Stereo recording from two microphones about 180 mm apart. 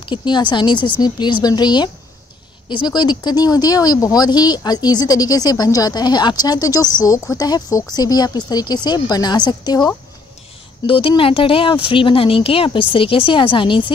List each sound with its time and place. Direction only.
0.0 s speech: 25° left (ahead or behind)